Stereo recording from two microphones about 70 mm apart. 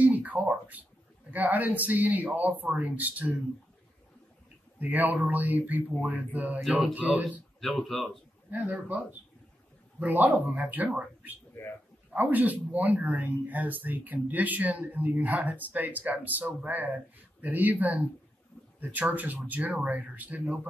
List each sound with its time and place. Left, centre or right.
0.0 s a sound: right
1.3 s speech: right
4.7 s speech: right
7.6 s speech: centre
8.5 s speech: right
12.1 s speech: right